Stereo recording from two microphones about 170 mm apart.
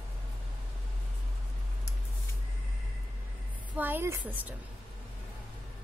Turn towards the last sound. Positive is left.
turn(degrees=-10)  # may be behind; listen again after turning